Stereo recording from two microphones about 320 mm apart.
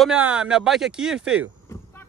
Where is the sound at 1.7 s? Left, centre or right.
Centre.